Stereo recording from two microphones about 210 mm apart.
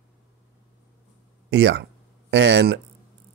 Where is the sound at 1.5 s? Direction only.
55° right (ahead or behind).